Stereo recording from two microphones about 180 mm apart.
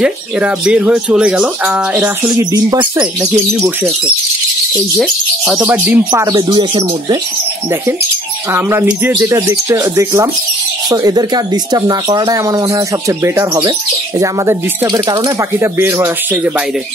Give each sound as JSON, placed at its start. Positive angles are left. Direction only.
{"t": 0.0, "sound": "speech", "side_deg": -5}
{"t": 2.2, "sound": "speech", "side_deg": -20}
{"t": 4.9, "sound": "speech", "side_deg": 0}
{"t": 6.3, "sound": "speech", "side_deg": -30}
{"t": 8.5, "sound": "speech", "side_deg": -15}